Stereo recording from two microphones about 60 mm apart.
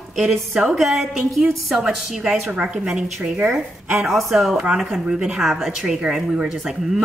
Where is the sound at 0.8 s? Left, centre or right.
Centre.